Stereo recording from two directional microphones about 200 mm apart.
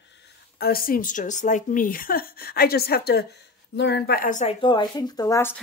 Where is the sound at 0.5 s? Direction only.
50° left (ahead or behind).